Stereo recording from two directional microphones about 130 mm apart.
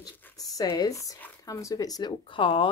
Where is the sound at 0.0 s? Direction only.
30° left (ahead or behind).